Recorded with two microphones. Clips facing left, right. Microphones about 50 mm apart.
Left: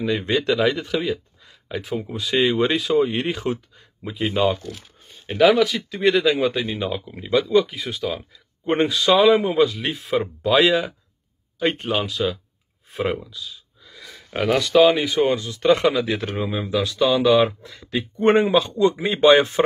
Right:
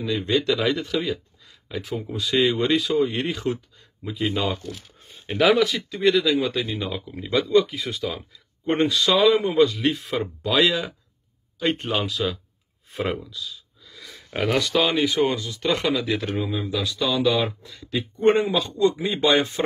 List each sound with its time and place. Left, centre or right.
0.0 s speech: left
0.3 s speech: centre
5.2 s speech: centre
5.8 s speech: left
6.3 s speech: centre
15.3 s speech: left